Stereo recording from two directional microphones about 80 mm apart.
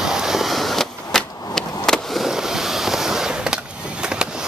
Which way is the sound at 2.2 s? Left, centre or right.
Centre.